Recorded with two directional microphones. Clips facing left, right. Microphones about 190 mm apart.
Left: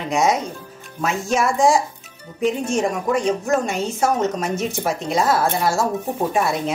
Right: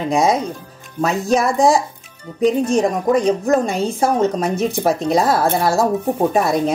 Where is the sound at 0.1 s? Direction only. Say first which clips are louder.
Right 2 dB; 30° right (ahead or behind).